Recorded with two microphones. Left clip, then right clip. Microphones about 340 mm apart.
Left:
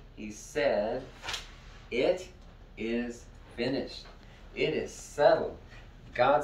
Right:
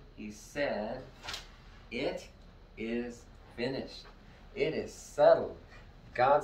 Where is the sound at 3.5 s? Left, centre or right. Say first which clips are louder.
Left 4 dB; centre.